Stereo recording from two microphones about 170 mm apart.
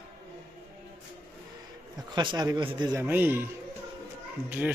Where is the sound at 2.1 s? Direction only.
25° right (ahead or behind).